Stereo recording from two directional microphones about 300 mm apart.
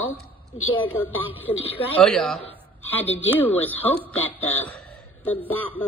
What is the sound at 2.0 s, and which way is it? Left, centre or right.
A woman's voice, centre.